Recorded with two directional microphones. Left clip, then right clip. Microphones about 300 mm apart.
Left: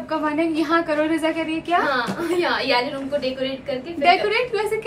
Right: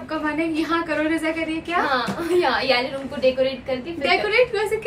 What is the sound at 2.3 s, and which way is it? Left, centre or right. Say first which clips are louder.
Speech: right 3 dB; centre.